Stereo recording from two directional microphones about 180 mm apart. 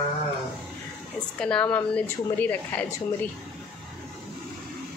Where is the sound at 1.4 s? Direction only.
5° left (ahead or behind).